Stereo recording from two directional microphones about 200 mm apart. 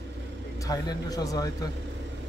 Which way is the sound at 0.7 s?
20° left (ahead or behind).